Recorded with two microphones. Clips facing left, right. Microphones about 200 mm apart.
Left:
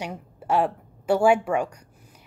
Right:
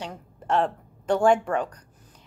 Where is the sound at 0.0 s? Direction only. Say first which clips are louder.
Left 3 dB; 10° left (ahead or behind).